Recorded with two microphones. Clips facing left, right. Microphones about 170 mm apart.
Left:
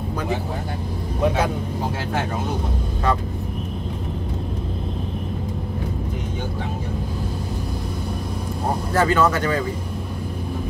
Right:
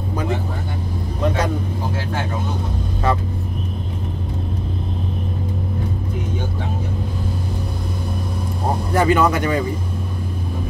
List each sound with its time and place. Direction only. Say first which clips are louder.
8.9 s speech: right 2 dB; 15° right (ahead or behind)